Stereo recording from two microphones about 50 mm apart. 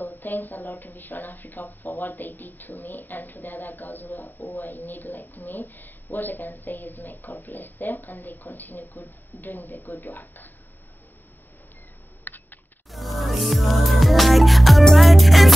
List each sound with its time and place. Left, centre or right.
0.0 s speech: left
12.3 s computer keyboard: left
12.9 s music: centre